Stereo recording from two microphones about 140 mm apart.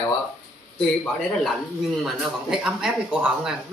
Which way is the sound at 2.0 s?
5° right (ahead or behind).